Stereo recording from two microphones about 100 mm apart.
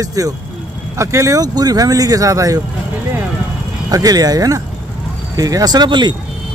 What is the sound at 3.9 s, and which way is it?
Speech, 40° right (ahead or behind).